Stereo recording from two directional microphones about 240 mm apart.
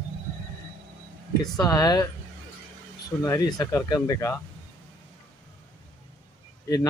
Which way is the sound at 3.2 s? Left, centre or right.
Centre.